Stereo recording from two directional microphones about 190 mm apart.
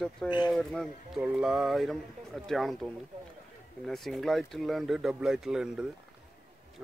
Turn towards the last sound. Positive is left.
turn(degrees=-5)  # may be behind; listen again after turning